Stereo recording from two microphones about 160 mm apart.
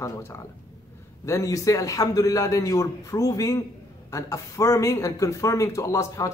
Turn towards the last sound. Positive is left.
turn(degrees=20)  # may be behind; listen again after turning